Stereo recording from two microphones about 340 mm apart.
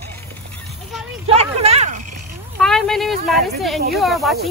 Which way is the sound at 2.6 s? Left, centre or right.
Centre.